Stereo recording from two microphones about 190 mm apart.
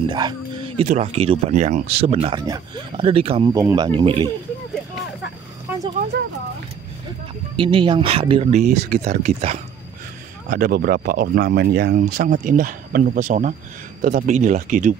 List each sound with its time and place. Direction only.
0.1 s speech: 25° right (ahead or behind)
0.8 s speech: 35° right (ahead or behind)
7.5 s speech: 25° right (ahead or behind)
10.5 s speech: 50° right (ahead or behind)